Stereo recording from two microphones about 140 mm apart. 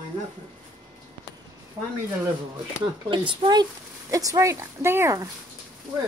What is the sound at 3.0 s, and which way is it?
Speech, 35° right (ahead or behind).